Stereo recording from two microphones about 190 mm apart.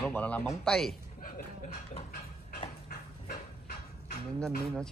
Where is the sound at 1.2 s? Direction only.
45° left (ahead or behind).